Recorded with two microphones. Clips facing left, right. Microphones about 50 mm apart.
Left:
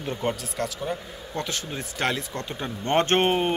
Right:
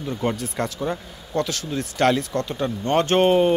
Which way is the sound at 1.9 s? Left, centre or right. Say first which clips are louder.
Right 8 dB; centre.